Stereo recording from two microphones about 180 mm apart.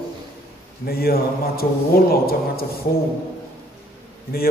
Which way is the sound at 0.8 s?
60° left (ahead or behind).